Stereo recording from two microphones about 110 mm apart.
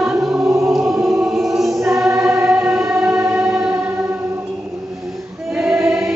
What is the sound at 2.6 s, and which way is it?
Music, 5° right (ahead or behind).